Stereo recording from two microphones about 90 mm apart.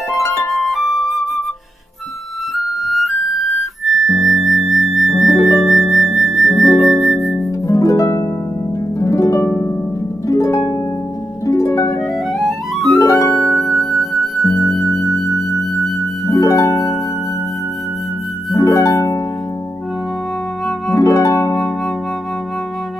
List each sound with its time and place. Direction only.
0.1 s music: 35° left (ahead or behind)
0.5 s flute: centre (ahead or behind)
2.5 s music: centre (ahead or behind)
5.3 s music: 35° left (ahead or behind)
5.6 s music: centre (ahead or behind)
7.6 s harp: 35° left (ahead or behind)
12.3 s music: centre (ahead or behind)
12.9 s music: 40° left (ahead or behind)
13.3 s music: centre (ahead or behind)
16.3 s harp: 40° left (ahead or behind)
18.5 s harp: 35° left (ahead or behind)
20.9 s harp: 35° left (ahead or behind)